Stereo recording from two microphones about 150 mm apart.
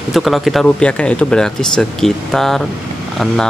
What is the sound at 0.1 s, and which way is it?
Speech, centre (ahead or behind).